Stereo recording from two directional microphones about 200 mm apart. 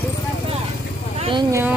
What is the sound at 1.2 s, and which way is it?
Speech, 25° right (ahead or behind).